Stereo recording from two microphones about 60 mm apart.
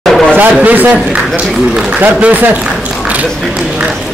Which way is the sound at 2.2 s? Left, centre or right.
Right.